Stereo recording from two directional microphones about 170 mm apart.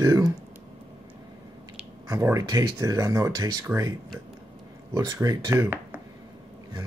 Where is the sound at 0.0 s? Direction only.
20° right (ahead or behind).